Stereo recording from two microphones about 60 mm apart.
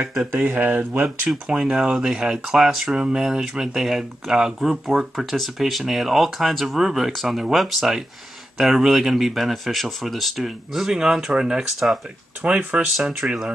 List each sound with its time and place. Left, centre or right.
0.5 s speech: right
1.5 s speech: centre
12.4 s speech: centre